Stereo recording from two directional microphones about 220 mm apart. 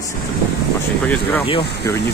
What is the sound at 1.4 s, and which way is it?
Speech, 25° left (ahead or behind).